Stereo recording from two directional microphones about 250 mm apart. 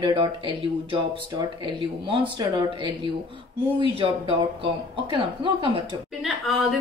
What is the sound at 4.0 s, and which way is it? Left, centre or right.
Speech, centre.